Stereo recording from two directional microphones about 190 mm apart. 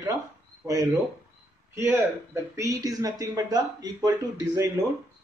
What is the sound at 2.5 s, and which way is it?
A man's voice, 15° right (ahead or behind).